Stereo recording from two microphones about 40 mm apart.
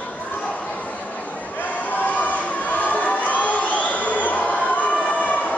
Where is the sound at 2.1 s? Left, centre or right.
Left.